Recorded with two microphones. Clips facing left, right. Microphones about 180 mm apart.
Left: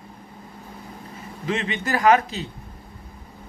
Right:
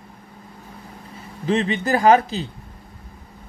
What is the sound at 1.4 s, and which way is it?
Speech, 35° right (ahead or behind).